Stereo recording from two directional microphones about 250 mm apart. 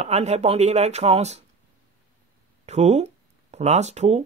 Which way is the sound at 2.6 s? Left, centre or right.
Right.